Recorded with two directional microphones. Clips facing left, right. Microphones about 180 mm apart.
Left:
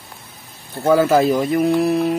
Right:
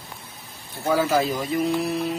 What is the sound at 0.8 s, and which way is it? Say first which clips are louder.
Speech: left 7 dB; 55° left (ahead or behind).